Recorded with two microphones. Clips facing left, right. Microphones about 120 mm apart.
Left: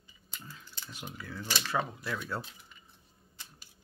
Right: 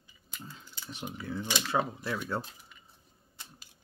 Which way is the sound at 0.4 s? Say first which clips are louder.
Right 3 dB; 25° right (ahead or behind).